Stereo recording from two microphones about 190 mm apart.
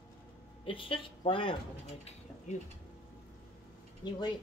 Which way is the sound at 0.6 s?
25° left (ahead or behind).